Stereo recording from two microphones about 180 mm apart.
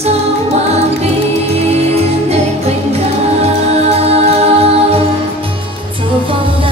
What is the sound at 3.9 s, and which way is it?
Music, 35° right (ahead or behind).